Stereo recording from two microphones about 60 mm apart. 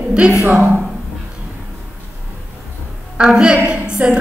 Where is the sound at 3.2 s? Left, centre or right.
Centre.